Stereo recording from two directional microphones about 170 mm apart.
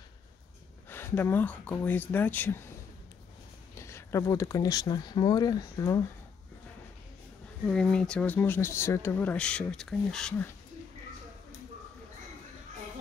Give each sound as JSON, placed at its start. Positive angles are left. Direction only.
{"t": 0.8, "sound": "speech", "side_deg": 10}
{"t": 3.7, "sound": "speech", "side_deg": 15}
{"t": 7.6, "sound": "speech", "side_deg": 5}